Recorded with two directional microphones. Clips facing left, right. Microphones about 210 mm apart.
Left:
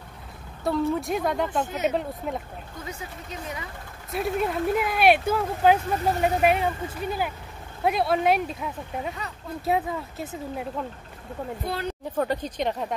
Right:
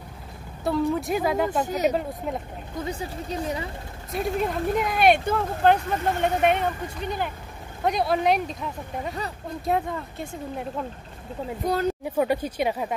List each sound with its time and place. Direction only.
0.7 s speech: centre (ahead or behind)
2.8 s speech: 35° right (ahead or behind)
4.1 s speech: centre (ahead or behind)
11.6 s speech: 45° right (ahead or behind)
12.2 s speech: 10° right (ahead or behind)